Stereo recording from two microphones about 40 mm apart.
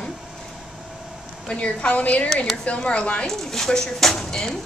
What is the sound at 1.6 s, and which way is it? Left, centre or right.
A woman's voice, left.